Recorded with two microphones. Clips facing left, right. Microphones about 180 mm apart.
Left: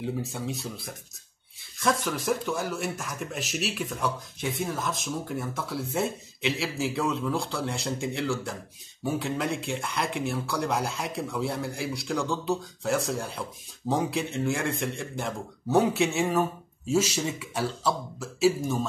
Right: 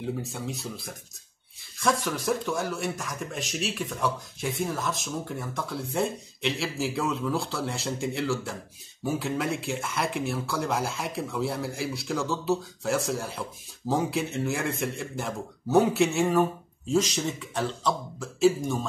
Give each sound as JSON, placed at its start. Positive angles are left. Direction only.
{"t": 0.0, "sound": "speech", "side_deg": 0}